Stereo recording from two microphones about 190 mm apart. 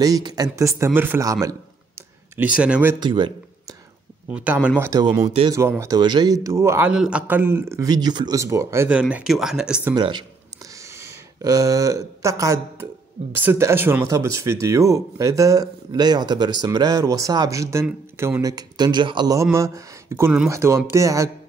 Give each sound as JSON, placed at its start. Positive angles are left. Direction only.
{"t": 0.0, "sound": "speech", "side_deg": -20}
{"t": 2.3, "sound": "speech", "side_deg": -5}
{"t": 3.0, "sound": "a man's voice", "side_deg": -25}
{"t": 4.3, "sound": "speech", "side_deg": -5}
{"t": 9.9, "sound": "speech", "side_deg": -25}
{"t": 10.8, "sound": "a sound", "side_deg": -15}
{"t": 13.3, "sound": "speech", "side_deg": -10}